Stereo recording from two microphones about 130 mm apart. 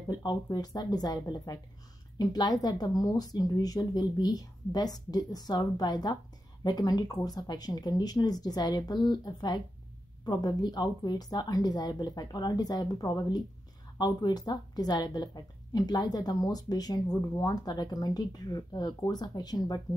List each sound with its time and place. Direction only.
0.1 s a woman's voice: 35° left (ahead or behind)